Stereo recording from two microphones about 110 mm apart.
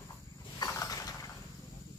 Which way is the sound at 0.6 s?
35° left (ahead or behind).